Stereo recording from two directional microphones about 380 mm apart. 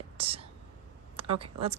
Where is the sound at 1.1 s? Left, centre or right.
Centre.